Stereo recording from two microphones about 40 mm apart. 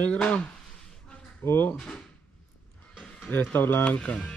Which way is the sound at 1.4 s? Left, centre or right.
Left.